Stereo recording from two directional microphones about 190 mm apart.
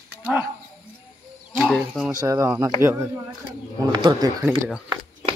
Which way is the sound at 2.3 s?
15° right (ahead or behind).